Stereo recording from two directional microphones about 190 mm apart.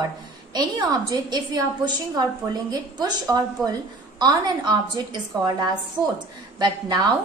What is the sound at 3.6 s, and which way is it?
Speech, centre (ahead or behind).